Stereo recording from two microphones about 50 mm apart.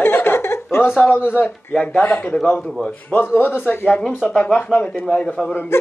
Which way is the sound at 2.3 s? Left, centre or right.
Centre.